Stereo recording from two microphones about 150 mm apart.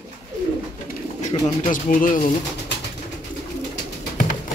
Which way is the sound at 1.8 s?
65° left (ahead or behind).